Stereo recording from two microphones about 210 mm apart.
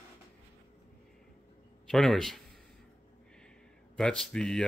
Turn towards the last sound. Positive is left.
turn(degrees=5)  # may be behind; listen again after turning